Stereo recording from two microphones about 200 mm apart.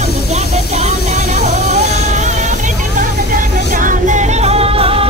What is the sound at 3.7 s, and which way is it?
Music, 40° right (ahead or behind).